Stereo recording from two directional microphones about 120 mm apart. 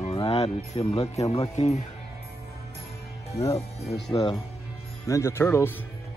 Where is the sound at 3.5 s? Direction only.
60° left (ahead or behind).